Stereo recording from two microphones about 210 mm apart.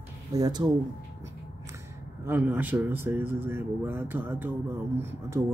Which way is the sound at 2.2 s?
10° right (ahead or behind).